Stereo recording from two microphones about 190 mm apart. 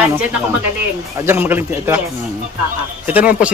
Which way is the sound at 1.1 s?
15° right (ahead or behind).